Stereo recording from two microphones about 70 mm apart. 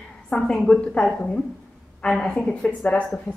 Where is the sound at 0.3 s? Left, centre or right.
Centre.